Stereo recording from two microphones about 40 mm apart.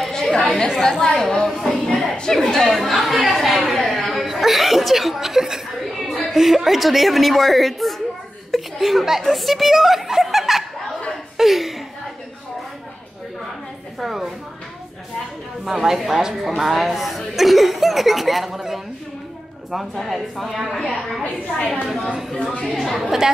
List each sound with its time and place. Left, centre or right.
0.1 s chatter: centre
0.7 s a woman's voice: centre
1.5 s a sound: centre
2.3 s a woman's voice: centre
2.8 s speech: centre
5.9 s a sound: centre
6.3 s speech: centre
8.5 s chuckle: centre
9.0 s speech: centre
13.9 s speech: centre
15.6 s speech: centre
22.4 s a woman's voice: left
22.8 s speech: centre
23.0 s speech: centre